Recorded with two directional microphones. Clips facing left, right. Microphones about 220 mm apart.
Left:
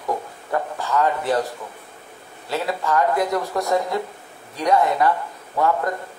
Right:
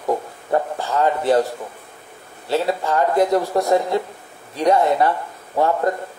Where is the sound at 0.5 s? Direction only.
30° right (ahead or behind).